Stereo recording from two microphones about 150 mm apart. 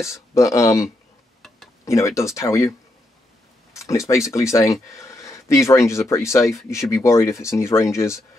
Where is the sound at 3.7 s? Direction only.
20° left (ahead or behind).